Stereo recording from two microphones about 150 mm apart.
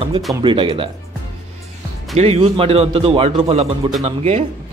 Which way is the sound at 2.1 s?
45° right (ahead or behind).